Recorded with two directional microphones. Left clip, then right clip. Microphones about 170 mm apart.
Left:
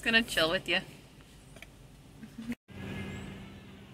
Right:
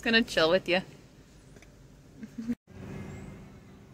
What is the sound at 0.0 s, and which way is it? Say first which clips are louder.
Speech: right 2 dB; 50° right (ahead or behind).